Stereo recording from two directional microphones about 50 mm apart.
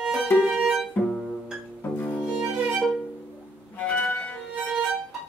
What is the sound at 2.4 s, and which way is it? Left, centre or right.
Violin, centre.